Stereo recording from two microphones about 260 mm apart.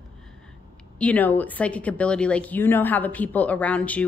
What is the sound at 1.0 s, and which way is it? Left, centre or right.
Speech, centre.